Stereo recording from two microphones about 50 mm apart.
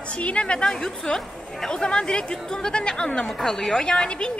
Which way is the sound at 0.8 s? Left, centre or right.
Centre.